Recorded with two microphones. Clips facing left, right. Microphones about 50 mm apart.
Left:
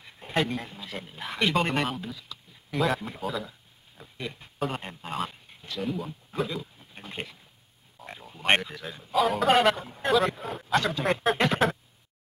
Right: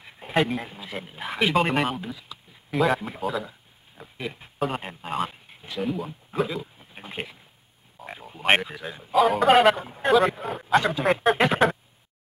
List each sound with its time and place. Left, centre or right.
0.0 s a man's voice: centre
4.0 s speech: centre
9.1 s a man's voice: centre